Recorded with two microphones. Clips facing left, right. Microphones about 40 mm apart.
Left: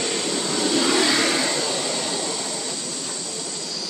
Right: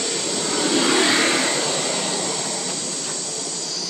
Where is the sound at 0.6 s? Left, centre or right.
Right.